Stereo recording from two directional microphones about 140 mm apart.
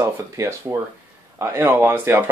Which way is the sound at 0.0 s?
20° right (ahead or behind).